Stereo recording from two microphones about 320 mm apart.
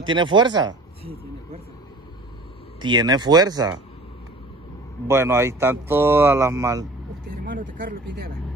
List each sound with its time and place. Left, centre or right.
0.0 s speech: centre
2.8 s speech: centre
5.0 s speech: centre
7.2 s speech: right